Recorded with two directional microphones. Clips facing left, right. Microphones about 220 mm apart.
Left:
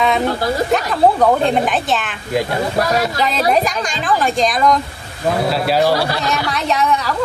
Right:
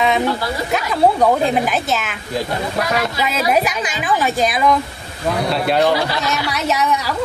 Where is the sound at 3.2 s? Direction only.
5° right (ahead or behind).